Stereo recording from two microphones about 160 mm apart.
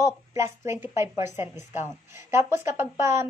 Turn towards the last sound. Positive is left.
turn(degrees=-15)  # may be behind; listen again after turning